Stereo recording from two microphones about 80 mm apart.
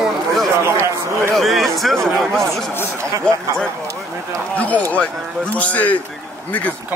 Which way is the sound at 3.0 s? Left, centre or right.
Right.